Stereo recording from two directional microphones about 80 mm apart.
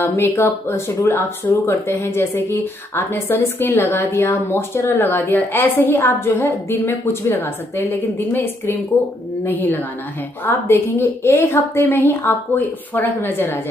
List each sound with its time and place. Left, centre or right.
0.1 s speech: left